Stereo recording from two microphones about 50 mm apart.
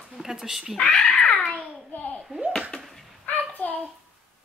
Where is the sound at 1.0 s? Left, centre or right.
Left.